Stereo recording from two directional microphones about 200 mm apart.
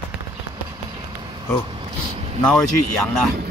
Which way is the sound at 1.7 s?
25° right (ahead or behind).